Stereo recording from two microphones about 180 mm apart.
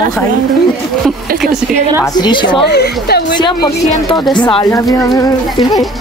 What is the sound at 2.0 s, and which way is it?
Speech, 25° left (ahead or behind).